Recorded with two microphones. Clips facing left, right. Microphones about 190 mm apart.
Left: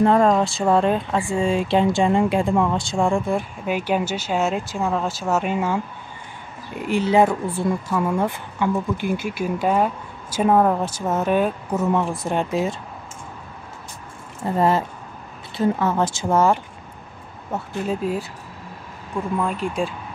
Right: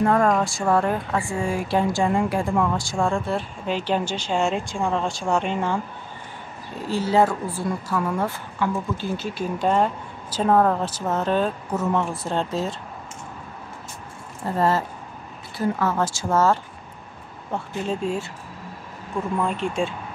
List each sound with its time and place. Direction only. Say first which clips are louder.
0.0 s a woman's voice: left 3 dB; 20° left (ahead or behind); by 5.8 s 5° left (ahead or behind)
6.7 s a woman's voice: left 3 dB; 15° left (ahead or behind)
14.4 s a woman's voice: left 2 dB; 15° left (ahead or behind)
19.3 s speech: left 1 dB; centre (ahead or behind)